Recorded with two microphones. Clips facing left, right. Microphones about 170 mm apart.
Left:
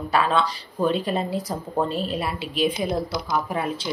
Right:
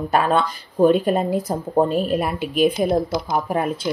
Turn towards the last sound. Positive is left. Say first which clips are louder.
# right 4 dB
turn(degrees=-50)  # may be behind; listen again after turning